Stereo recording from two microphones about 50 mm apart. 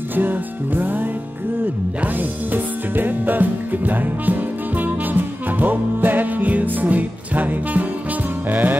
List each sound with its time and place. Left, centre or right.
0.1 s music: right